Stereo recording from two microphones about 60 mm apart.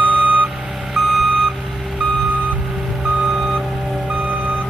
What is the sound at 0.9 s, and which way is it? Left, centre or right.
Reversing beeps, centre.